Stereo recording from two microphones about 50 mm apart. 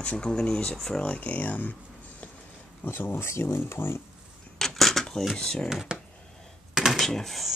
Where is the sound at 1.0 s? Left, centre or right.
Left.